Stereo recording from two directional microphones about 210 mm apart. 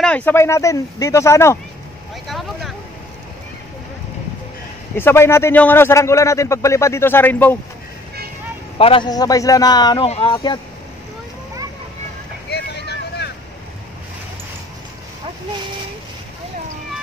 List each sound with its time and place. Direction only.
0.0 s a man's voice: 5° left (ahead or behind)
2.2 s vehicle: centre (ahead or behind)
4.9 s a man's voice: 10° left (ahead or behind)
8.7 s a man's voice: 25° left (ahead or behind)
12.4 s vehicle: 50° left (ahead or behind)